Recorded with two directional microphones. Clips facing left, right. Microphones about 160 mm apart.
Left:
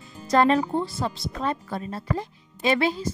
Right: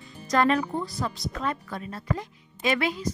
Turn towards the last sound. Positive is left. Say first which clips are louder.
# left 3 dB
turn(degrees=30)  # may be behind; listen again after turning